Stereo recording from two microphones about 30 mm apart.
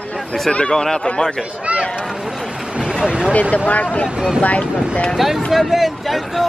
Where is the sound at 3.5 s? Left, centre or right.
Left.